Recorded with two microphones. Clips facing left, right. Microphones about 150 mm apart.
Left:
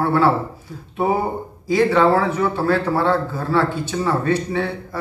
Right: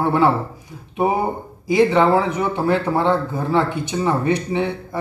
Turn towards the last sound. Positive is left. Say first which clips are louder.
# right 1 dB
turn(degrees=-20)  # may be behind; listen again after turning